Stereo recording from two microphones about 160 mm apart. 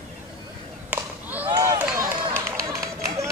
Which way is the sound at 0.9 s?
10° right (ahead or behind).